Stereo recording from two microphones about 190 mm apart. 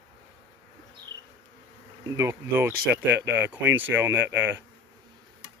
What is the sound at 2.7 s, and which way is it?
Speech, 50° right (ahead or behind).